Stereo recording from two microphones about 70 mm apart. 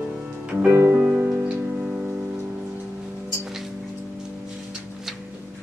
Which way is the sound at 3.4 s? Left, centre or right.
Centre.